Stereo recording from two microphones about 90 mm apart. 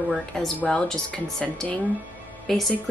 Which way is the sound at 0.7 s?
5° left (ahead or behind).